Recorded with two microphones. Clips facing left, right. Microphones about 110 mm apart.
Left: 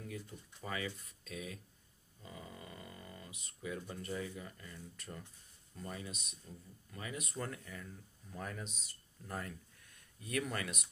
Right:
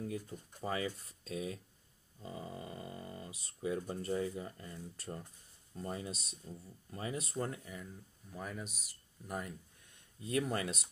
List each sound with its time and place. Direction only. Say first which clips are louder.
0.0 s speech: right 6 dB; 30° right (ahead or behind)
8.3 s speech: right 1 dB; 5° right (ahead or behind)
9.3 s speech: right 2 dB; 20° right (ahead or behind)